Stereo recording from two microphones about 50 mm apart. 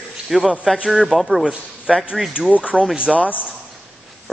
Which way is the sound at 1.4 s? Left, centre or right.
Centre.